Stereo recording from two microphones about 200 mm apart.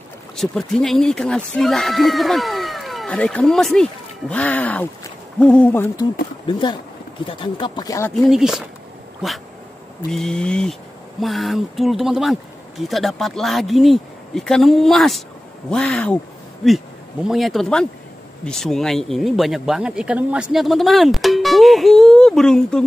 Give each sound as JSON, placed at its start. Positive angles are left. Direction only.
{"t": 0.4, "sound": "speech", "side_deg": 0}
{"t": 6.4, "sound": "speech", "side_deg": 25}
{"t": 8.1, "sound": "speech", "side_deg": 0}
{"t": 10.1, "sound": "speech", "side_deg": 5}
{"t": 17.3, "sound": "speech", "side_deg": 0}